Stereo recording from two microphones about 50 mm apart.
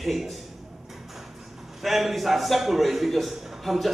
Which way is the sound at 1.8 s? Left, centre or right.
Centre.